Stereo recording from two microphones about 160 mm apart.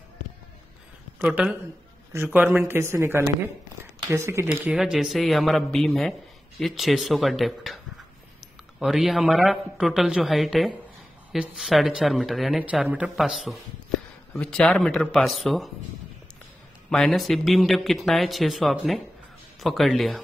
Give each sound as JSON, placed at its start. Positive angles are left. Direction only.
{"t": 1.2, "sound": "speech", "side_deg": -5}
{"t": 16.9, "sound": "speech", "side_deg": 0}